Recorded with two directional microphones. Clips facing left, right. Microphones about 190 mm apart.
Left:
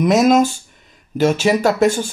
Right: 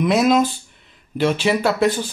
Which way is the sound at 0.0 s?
45° left (ahead or behind).